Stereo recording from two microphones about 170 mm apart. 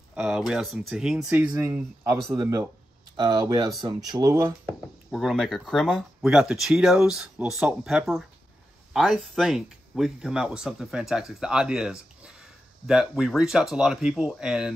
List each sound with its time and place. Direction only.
0.1 s speech: 5° right (ahead or behind)
4.6 s speech: centre (ahead or behind)